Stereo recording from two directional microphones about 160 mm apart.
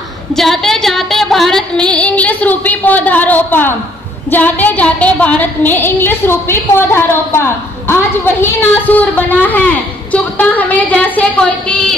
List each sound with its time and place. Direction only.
0.4 s a woman's voice: centre (ahead or behind)